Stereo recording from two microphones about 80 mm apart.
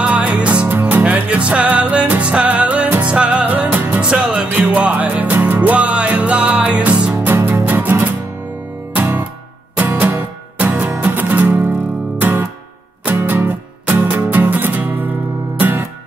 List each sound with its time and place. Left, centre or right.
0.0 s music: centre
7.2 s music: right